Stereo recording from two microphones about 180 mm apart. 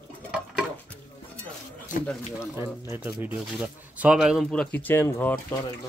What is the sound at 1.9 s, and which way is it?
Speech, 45° left (ahead or behind).